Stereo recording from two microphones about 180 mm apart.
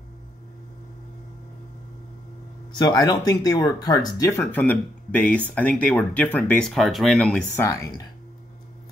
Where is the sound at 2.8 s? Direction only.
20° left (ahead or behind); by 7.4 s 5° left (ahead or behind).